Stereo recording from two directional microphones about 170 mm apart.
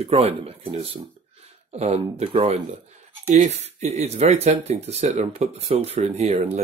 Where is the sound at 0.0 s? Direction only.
35° right (ahead or behind).